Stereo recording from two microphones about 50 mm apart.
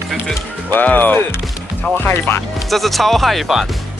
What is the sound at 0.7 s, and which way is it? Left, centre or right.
Speech, left.